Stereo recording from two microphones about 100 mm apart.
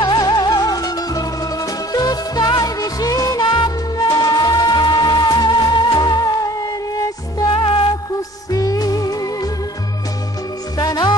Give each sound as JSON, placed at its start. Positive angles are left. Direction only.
{"t": 0.0, "sound": "music", "side_deg": 45}
{"t": 7.3, "sound": "music", "side_deg": 55}
{"t": 8.5, "sound": "music", "side_deg": 35}
{"t": 10.8, "sound": "music", "side_deg": 40}